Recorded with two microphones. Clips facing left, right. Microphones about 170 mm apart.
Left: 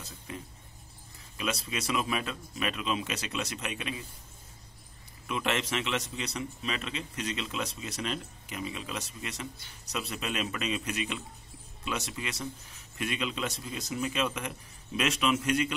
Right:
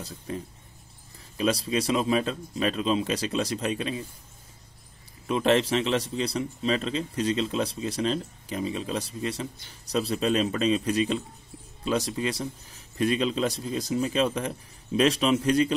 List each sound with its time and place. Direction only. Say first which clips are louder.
0.3 s a man's voice: right 7 dB; 35° right (ahead or behind)
5.2 s a man's voice: right 9 dB; 35° right (ahead or behind)